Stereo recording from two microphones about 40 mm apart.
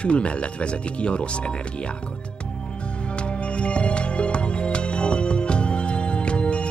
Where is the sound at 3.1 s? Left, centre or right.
Left.